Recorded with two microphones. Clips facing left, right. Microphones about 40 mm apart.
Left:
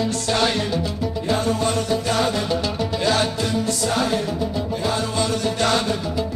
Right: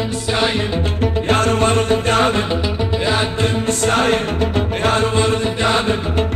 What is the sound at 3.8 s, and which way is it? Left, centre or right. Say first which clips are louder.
Music: right 8 dB; right.